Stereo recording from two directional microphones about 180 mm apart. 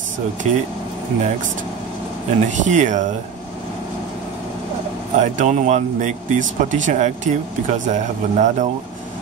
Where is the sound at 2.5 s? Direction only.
45° right (ahead or behind).